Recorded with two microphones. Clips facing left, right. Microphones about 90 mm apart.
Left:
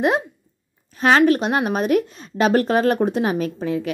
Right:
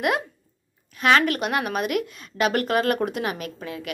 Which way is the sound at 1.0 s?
30° left (ahead or behind).